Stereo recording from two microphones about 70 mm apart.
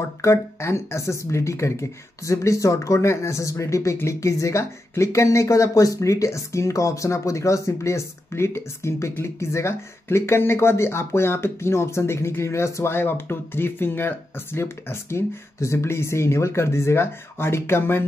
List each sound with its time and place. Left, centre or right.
0.2 s speech: left